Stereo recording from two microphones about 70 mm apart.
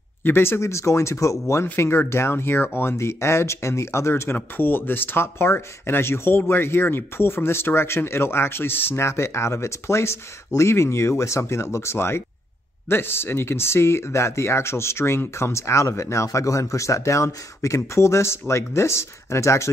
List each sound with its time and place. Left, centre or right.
0.2 s speech: left